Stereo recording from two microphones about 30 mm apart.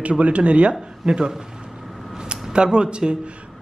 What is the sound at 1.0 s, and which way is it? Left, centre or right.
Speech, right.